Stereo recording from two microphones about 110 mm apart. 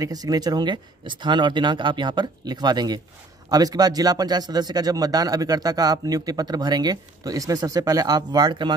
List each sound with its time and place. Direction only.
0.0 s speech: 35° right (ahead or behind)